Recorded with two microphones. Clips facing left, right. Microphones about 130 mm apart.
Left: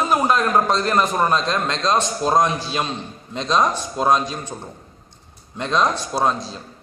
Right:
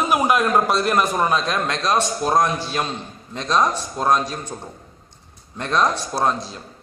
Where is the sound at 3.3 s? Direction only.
15° left (ahead or behind).